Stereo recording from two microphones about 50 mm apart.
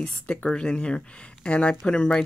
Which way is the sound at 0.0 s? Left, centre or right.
Left.